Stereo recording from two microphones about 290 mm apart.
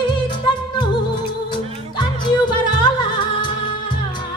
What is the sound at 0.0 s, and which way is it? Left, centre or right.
Music, centre.